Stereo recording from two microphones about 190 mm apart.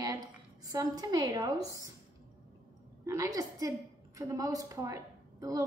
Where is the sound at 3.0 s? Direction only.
15° right (ahead or behind).